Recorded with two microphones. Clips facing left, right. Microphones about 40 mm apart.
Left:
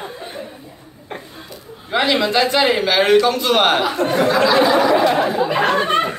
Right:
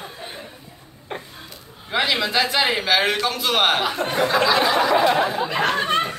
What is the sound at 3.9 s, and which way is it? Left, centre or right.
A man's voice, centre.